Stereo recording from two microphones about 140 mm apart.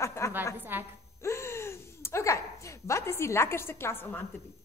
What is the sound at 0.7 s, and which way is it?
Speech, 15° right (ahead or behind).